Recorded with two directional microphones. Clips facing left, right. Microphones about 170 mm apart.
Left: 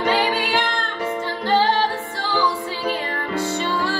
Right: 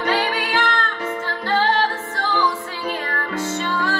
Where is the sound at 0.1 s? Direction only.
15° left (ahead or behind).